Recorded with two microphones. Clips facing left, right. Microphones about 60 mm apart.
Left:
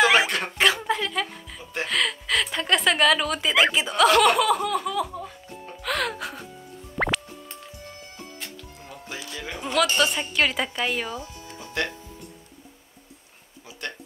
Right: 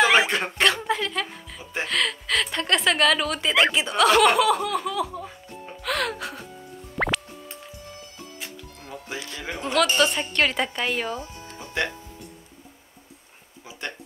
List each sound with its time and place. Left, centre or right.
0.0 s a sound: centre
0.6 s a woman's voice: centre
7.0 s music: centre
9.6 s a woman's voice: centre
11.1 s music: right
13.7 s a sound: right